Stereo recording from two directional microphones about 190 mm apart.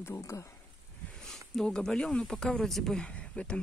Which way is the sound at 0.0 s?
15° left (ahead or behind).